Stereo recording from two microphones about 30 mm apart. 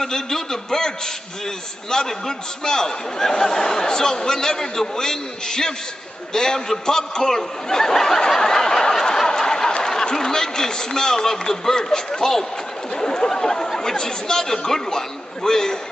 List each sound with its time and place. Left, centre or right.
0.0 s a sound: centre
1.9 s a man's voice: centre
8.3 s snicker: centre
9.7 s a sound: left
9.9 s a man's voice: left
13.0 s a man's voice: left